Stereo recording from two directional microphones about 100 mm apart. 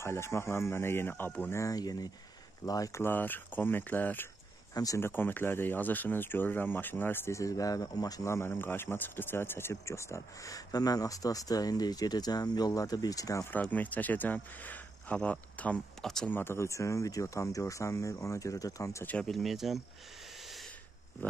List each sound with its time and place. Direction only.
0.0 s speech: 25° left (ahead or behind)
1.5 s speech: 35° left (ahead or behind)
3.0 s speech: 20° left (ahead or behind)
4.7 s speech: 35° left (ahead or behind)
5.0 s speech: 20° left (ahead or behind)
13.5 s speech: 15° left (ahead or behind)
16.3 s speech: 20° left (ahead or behind)
19.0 s speech: 10° left (ahead or behind)
19.3 s speech: centre (ahead or behind)
21.2 s speech: 20° left (ahead or behind)